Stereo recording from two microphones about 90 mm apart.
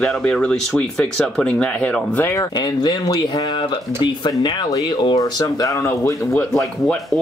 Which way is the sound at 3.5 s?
60° left (ahead or behind).